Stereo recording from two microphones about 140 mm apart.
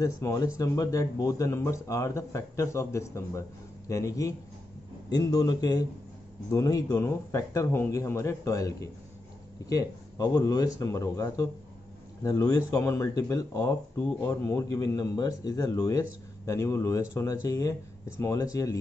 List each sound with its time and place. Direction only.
0.0 s speech: 25° left (ahead or behind)